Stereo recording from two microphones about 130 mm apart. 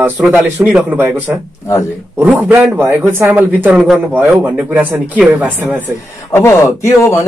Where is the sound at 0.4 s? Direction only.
5° right (ahead or behind).